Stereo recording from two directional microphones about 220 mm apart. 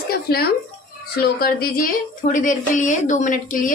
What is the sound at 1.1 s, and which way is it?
A woman's voice, 45° left (ahead or behind).